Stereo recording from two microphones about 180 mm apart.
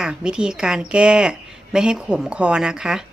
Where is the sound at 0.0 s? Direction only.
5° right (ahead or behind).